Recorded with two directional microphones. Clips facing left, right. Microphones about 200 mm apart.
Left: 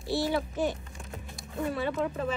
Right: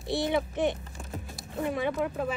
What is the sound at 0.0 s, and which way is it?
A woman's voice, 20° right (ahead or behind).